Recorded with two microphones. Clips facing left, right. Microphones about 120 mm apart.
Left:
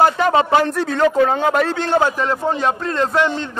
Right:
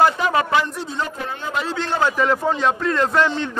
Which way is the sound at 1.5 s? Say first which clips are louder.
Left 6 dB; 55° left (ahead or behind).